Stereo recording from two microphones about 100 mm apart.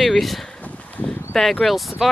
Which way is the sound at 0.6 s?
15° left (ahead or behind).